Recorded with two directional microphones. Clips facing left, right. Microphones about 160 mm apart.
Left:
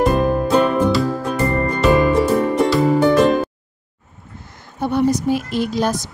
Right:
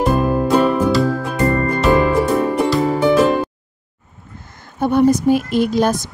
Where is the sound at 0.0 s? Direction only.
Centre (ahead or behind).